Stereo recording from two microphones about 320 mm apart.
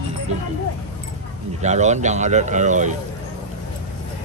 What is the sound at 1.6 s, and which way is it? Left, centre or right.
Speech, right.